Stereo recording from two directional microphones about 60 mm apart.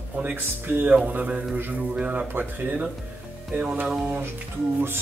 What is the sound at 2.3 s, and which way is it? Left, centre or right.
Speech, right.